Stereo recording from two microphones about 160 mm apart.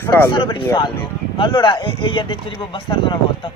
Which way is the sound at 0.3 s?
30° left (ahead or behind).